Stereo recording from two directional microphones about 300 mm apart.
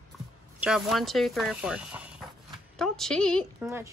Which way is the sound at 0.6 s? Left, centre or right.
Centre.